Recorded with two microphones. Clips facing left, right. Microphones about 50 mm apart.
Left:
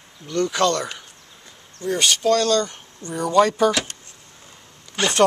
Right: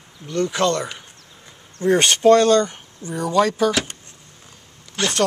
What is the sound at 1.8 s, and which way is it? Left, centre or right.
Speech, right.